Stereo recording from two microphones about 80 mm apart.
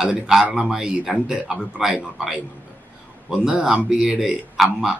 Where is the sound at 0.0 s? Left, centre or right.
Centre.